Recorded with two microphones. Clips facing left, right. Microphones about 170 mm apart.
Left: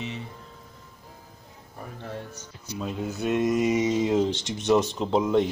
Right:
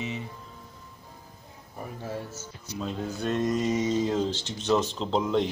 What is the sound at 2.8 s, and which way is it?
Speech, 5° left (ahead or behind).